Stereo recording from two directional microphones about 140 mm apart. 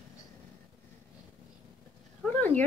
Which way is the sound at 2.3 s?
10° left (ahead or behind).